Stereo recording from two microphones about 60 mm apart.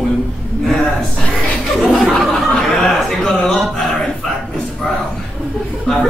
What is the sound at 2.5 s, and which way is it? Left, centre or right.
Speech, centre.